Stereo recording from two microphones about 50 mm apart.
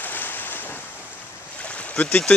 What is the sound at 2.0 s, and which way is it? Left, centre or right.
Speech, left.